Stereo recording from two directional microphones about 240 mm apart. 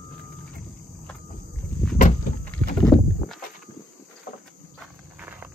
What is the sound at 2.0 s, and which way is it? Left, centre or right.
Walk, left.